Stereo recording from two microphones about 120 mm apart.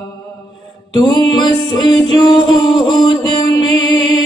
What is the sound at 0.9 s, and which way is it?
Music, 35° left (ahead or behind).